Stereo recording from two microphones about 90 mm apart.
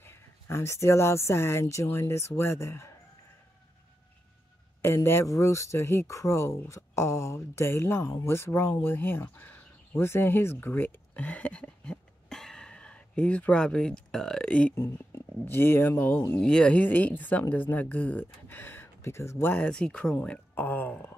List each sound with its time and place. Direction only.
0.0 s speech: 30° left (ahead or behind)
4.8 s a woman's voice: 30° left (ahead or behind)
8.8 s a sound: 25° left (ahead or behind)
15.4 s a woman's voice: 25° left (ahead or behind)
16.3 s a woman's voice: 10° left (ahead or behind); by 19.6 s 25° left (ahead or behind)
19.6 s speech: 10° left (ahead or behind)
20.5 s a woman's voice: 20° left (ahead or behind)